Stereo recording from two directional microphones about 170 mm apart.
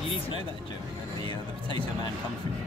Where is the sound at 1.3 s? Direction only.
30° left (ahead or behind).